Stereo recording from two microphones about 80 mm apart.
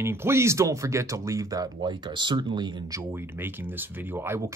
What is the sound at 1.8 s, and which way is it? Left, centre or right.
Speech, right.